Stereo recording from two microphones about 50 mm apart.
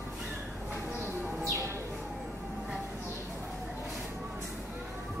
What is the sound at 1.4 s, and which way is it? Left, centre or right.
Bird, right.